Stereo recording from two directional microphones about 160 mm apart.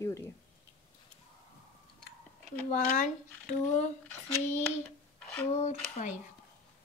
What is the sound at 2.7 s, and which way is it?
Speech, 50° left (ahead or behind).